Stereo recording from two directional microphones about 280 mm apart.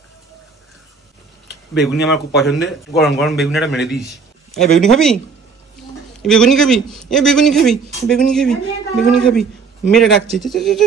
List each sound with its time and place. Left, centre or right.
1.8 s a man's voice: centre
6.2 s a man's voice: centre